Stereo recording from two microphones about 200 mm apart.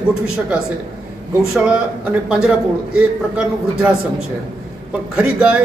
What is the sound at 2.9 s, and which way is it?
A man's voice, 5° right (ahead or behind).